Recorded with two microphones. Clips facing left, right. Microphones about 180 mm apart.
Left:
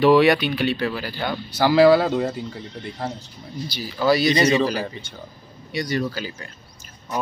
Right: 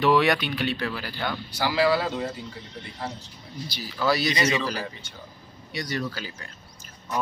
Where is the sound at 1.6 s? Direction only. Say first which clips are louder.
Left 8 dB; 45° left (ahead or behind).